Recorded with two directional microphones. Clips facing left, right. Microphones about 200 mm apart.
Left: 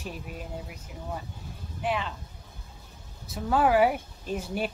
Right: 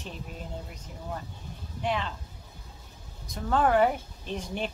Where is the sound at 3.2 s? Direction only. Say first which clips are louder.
Left 1 dB; 5° left (ahead or behind).